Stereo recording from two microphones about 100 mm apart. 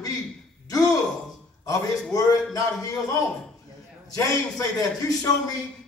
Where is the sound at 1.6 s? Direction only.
35° left (ahead or behind).